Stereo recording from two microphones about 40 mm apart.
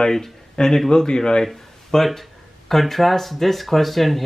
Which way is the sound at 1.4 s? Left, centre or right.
Centre.